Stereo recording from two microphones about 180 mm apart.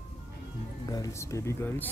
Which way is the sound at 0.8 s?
20° left (ahead or behind).